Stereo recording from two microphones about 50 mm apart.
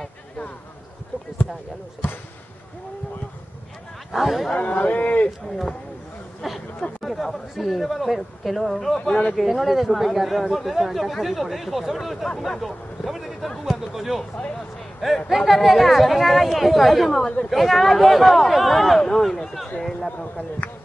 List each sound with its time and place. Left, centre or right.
4.1 s speech: centre
4.6 s speech: left
6.4 s speech: centre
9.3 s speech: centre
15.2 s speech: centre